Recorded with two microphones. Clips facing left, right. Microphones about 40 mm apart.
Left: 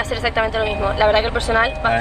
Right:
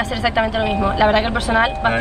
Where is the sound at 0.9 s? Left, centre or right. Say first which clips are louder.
Left 1 dB; centre.